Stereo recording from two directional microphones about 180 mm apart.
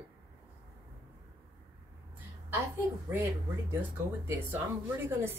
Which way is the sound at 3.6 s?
15° right (ahead or behind).